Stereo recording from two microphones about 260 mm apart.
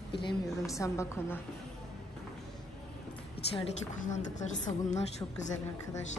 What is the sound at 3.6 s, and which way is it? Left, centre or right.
A woman's voice, left.